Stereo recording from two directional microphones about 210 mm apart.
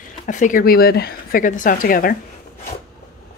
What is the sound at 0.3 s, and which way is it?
Speech, 40° left (ahead or behind).